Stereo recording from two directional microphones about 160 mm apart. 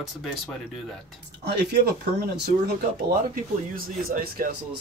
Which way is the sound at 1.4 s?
90° right.